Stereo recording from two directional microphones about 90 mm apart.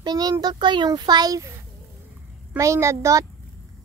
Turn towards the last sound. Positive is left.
turn(degrees=-35)  # may be behind; listen again after turning